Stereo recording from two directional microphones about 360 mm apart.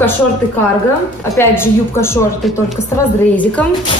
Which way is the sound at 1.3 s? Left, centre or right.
Centre.